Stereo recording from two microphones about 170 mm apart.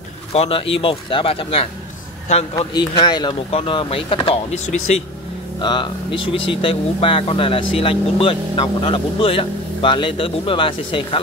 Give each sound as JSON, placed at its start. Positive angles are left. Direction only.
{"t": 0.3, "sound": "speech", "side_deg": 35}
{"t": 2.5, "sound": "speech", "side_deg": 25}
{"t": 5.6, "sound": "speech", "side_deg": 30}